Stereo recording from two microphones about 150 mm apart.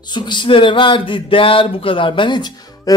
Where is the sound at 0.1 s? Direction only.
30° left (ahead or behind).